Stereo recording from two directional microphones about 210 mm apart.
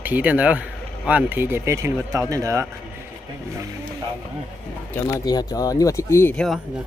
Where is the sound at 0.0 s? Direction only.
10° right (ahead or behind).